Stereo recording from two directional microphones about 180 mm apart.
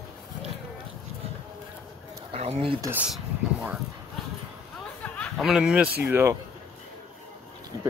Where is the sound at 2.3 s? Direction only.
35° right (ahead or behind).